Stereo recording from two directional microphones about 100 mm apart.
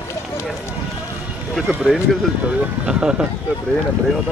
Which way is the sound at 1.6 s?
10° right (ahead or behind).